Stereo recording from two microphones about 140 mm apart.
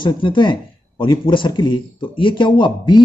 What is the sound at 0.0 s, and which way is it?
Speech, 35° left (ahead or behind).